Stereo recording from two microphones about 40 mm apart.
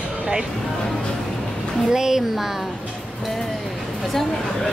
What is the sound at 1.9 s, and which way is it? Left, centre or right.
Speech, centre.